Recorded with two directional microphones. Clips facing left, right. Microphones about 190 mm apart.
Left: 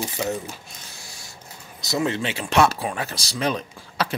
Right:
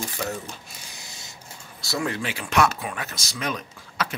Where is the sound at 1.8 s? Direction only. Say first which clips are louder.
Left 4 dB; 20° left (ahead or behind).